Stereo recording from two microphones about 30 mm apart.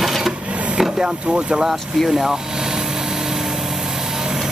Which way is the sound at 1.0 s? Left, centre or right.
Right.